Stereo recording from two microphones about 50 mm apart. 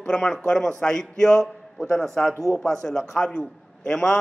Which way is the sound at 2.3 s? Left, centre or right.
Right.